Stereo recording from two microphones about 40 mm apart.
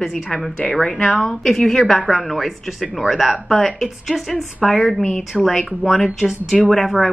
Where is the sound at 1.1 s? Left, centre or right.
Centre.